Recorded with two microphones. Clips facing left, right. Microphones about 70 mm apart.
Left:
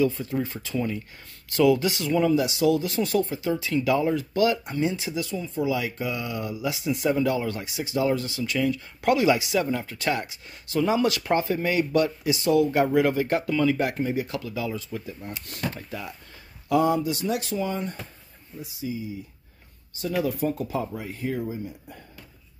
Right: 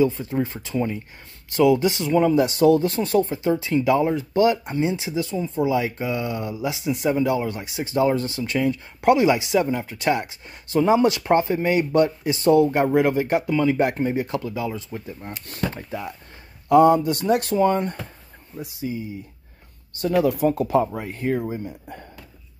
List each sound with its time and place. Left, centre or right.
0.0 s speech: right
2.3 s speech: right
7.8 s speech: right
12.8 s speech: right
16.6 s speech: right
20.2 s speech: right